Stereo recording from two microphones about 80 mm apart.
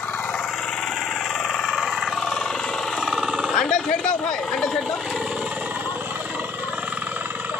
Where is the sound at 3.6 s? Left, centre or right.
Centre.